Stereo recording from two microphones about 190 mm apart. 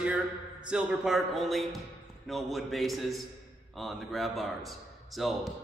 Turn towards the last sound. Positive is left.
turn(degrees=0)  # may be behind; listen again after turning